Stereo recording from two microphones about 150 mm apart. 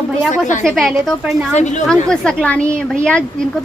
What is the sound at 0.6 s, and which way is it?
Speech, centre (ahead or behind).